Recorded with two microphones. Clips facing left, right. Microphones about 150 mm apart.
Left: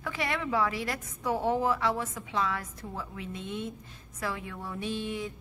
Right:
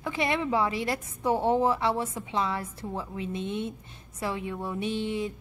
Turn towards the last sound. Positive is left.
turn(degrees=-20)  # may be behind; listen again after turning